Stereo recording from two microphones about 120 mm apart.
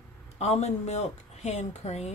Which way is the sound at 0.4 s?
65° left (ahead or behind).